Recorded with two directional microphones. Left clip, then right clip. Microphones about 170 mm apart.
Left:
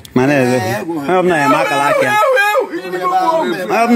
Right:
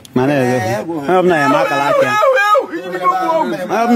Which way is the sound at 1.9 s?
15° left (ahead or behind).